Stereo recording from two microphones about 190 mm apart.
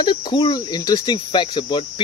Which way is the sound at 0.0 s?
25° left (ahead or behind).